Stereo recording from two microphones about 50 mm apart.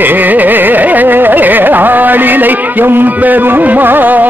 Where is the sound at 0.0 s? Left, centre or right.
Right.